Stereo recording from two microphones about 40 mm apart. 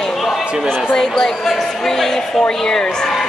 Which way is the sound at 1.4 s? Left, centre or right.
Centre.